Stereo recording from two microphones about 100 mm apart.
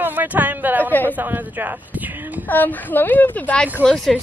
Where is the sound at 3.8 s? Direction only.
Centre (ahead or behind).